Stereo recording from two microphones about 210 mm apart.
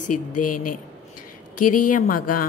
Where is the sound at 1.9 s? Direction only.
40° left (ahead or behind).